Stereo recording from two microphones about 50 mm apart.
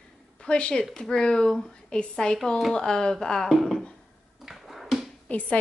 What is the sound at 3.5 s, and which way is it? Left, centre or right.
Speech, centre.